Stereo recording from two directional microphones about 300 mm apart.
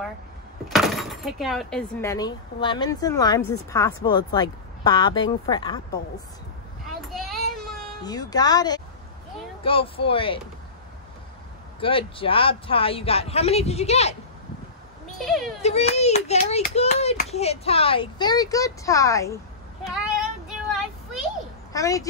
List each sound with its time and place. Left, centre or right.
0.7 s speech: centre
6.9 s child singing: centre
8.0 s speech: centre
11.8 s speech: centre
15.1 s speech: centre
15.6 s speech: left
20.1 s child singing: centre
21.7 s speech: centre